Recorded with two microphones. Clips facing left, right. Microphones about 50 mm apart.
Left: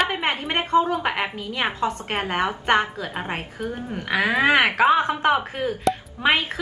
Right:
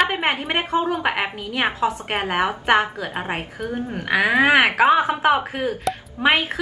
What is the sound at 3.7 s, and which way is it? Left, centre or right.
A woman's voice, right.